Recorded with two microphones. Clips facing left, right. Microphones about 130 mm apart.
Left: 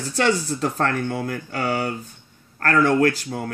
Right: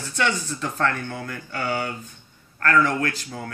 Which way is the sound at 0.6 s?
35° left (ahead or behind).